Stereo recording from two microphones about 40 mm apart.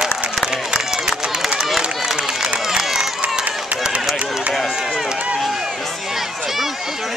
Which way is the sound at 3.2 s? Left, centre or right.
Right.